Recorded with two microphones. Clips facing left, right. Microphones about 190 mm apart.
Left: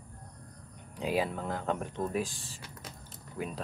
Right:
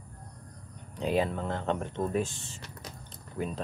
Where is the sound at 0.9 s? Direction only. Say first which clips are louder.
Right 3 dB; 5° left (ahead or behind).